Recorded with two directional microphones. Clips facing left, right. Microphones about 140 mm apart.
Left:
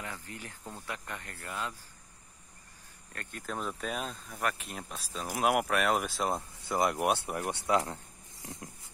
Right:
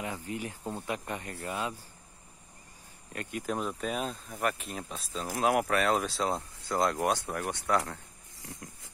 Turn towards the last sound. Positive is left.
turn(degrees=15)  # may be behind; listen again after turning